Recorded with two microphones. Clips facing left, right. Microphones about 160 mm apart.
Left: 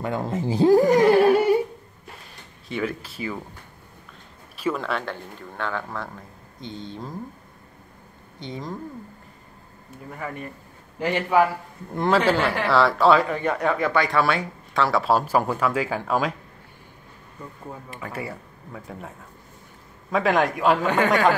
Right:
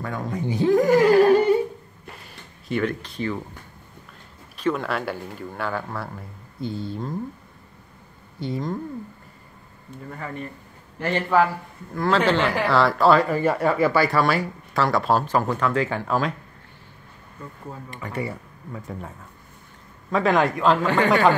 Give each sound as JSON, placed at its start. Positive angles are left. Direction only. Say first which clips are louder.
{"t": 0.0, "sound": "speech", "louder": "left 2 dB", "side_deg": 25}
{"t": 1.2, "sound": "humming", "louder": "right 1 dB", "side_deg": 10}
{"t": 2.7, "sound": "speech", "louder": "right 3 dB", "side_deg": 5}
{"t": 4.6, "sound": "speech", "louder": "right 2 dB", "side_deg": 0}
{"t": 8.4, "sound": "speech", "louder": "right 6 dB", "side_deg": -5}
{"t": 10.1, "sound": "speech", "louder": "left 1 dB", "side_deg": 10}
{"t": 17.8, "sound": "speech", "louder": "right 4 dB", "side_deg": 5}
{"t": 21.1, "sound": "speech", "louder": "right 2 dB", "side_deg": 0}